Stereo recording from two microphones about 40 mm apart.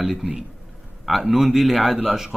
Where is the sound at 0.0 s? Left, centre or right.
Centre.